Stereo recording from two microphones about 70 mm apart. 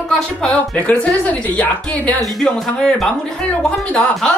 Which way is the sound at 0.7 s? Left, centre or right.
Left.